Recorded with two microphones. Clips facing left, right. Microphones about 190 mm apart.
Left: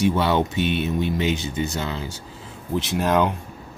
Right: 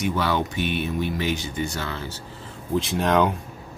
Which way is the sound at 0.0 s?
25° left (ahead or behind).